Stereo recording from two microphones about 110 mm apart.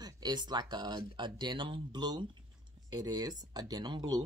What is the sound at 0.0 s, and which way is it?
Speech, 40° right (ahead or behind).